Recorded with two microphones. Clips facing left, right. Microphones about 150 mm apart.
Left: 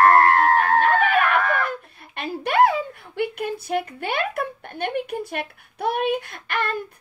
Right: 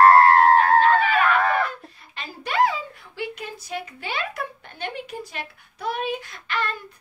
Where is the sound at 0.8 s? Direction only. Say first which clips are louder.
Even; 55° left (ahead or behind).